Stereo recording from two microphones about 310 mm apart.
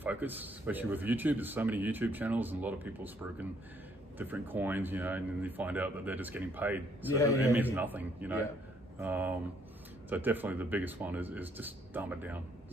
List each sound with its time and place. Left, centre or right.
0.0 s speech: centre